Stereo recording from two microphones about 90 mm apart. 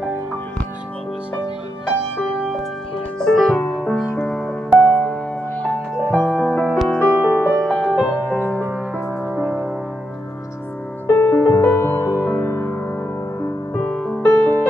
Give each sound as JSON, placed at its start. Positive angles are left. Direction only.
{"t": 2.2, "sound": "music", "side_deg": 0}
{"t": 3.6, "sound": "music", "side_deg": 15}
{"t": 4.7, "sound": "music", "side_deg": 15}
{"t": 7.2, "sound": "music", "side_deg": -20}
{"t": 7.6, "sound": "music", "side_deg": 10}
{"t": 8.1, "sound": "music", "side_deg": 25}
{"t": 11.1, "sound": "music", "side_deg": 25}
{"t": 13.4, "sound": "music", "side_deg": 15}